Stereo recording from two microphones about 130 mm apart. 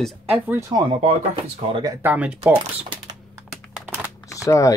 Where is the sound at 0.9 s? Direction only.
45° right (ahead or behind).